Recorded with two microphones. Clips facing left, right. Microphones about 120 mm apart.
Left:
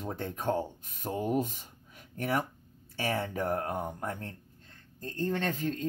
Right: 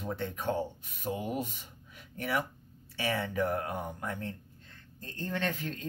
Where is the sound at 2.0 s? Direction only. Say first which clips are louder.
Left 2 dB; 40° left (ahead or behind).